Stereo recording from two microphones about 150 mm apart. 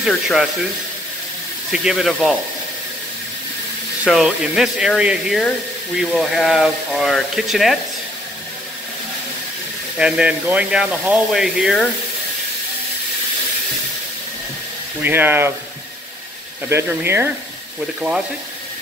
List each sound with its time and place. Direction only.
0.0 s speech: centre (ahead or behind)
1.7 s speech: 5° right (ahead or behind)
4.0 s speech: 5° right (ahead or behind)
9.9 s speech: 5° right (ahead or behind)
15.0 s speech: 15° right (ahead or behind)
16.6 s speech: 15° right (ahead or behind)